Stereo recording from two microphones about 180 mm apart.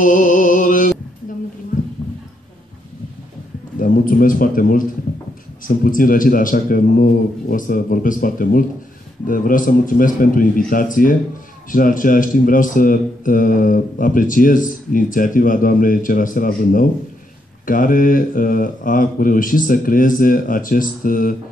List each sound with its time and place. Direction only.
0.0 s music: 45° left (ahead or behind)
3.8 s speech: 50° left (ahead or behind)